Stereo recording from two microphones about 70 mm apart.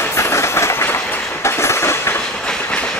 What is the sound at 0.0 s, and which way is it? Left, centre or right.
Train, left.